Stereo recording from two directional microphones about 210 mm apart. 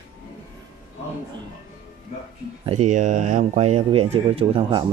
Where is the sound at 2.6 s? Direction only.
35° right (ahead or behind).